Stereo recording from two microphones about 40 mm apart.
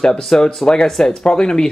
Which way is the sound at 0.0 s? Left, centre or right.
Centre.